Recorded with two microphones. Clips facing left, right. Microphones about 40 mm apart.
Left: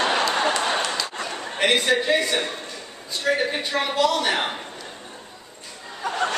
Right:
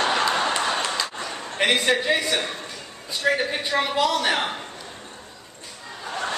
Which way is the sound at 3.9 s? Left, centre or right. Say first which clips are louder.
Left 2 dB; centre.